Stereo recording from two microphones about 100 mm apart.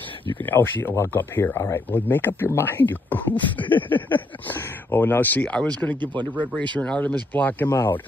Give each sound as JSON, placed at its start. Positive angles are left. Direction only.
{"t": 0.4, "sound": "speech", "side_deg": 20}